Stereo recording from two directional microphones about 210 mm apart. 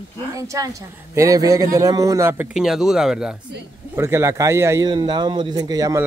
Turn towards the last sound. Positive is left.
turn(degrees=-15)  # may be behind; listen again after turning